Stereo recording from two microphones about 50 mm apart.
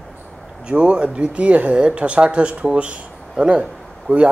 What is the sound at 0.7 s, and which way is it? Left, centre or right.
A man's voice, right.